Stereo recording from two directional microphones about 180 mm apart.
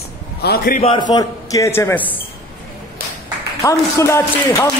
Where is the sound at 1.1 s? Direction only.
20° left (ahead or behind).